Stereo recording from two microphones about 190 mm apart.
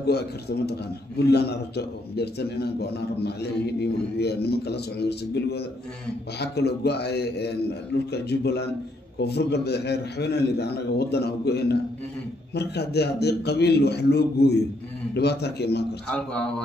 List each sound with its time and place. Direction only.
0.0 s a man's voice: 60° left (ahead or behind)
16.1 s a man's voice: 5° left (ahead or behind)